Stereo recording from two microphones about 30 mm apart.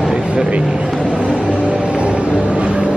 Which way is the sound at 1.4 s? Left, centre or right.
Right.